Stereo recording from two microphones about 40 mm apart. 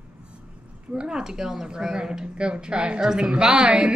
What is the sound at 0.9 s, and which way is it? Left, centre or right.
A woman's voice, centre.